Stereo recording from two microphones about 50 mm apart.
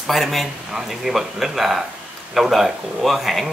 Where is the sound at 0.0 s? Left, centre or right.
Centre.